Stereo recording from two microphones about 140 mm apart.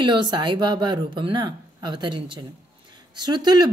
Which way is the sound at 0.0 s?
30° right (ahead or behind).